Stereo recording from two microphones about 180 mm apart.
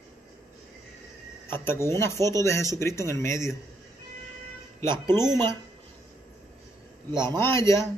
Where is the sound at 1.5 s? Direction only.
15° left (ahead or behind).